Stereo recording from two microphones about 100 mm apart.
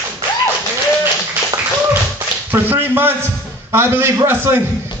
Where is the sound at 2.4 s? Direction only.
20° right (ahead or behind).